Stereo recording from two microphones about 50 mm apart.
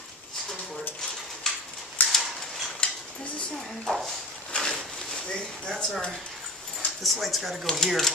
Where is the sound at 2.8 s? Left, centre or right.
Left.